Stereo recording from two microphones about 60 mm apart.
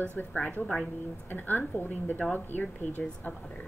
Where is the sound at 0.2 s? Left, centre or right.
Left.